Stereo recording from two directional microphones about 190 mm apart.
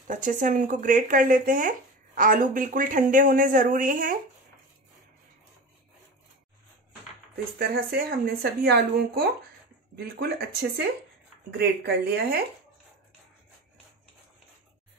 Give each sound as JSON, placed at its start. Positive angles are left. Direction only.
{"t": 0.1, "sound": "speech", "side_deg": -45}
{"t": 7.5, "sound": "speech", "side_deg": -55}